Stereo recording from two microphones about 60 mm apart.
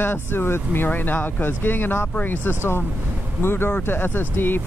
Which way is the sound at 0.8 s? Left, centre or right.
Left.